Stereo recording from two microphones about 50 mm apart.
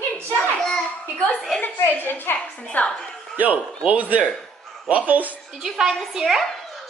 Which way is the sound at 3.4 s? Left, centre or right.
Right.